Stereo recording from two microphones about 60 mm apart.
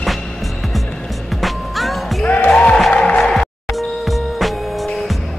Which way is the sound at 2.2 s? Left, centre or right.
Left.